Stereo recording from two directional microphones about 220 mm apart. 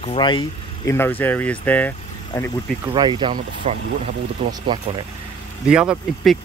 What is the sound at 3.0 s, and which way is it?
Speech, 20° right (ahead or behind).